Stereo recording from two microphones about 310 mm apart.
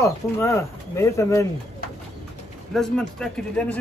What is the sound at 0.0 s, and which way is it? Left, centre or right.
Speech, centre.